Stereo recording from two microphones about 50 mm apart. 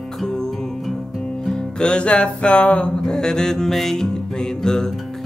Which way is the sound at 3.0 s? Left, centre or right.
Centre.